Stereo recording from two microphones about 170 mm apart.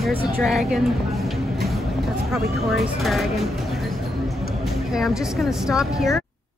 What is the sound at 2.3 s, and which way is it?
Speech, centre (ahead or behind).